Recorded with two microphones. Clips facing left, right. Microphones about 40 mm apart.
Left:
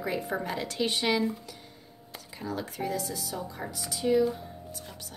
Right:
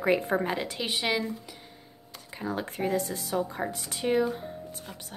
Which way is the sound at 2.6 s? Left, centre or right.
Right.